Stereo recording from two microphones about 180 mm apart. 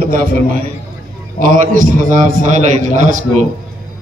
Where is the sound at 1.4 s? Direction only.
45° right (ahead or behind).